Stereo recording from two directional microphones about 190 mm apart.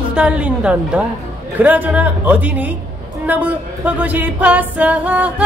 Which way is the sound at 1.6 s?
10° right (ahead or behind).